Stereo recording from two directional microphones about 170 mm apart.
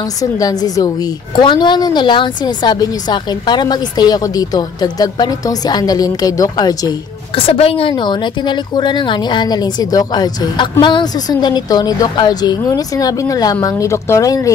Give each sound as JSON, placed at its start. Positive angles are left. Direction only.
{"t": 0.2, "sound": "a woman's voice", "side_deg": 20}